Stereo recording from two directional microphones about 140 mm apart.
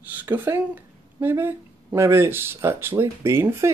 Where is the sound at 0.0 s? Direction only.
15° right (ahead or behind).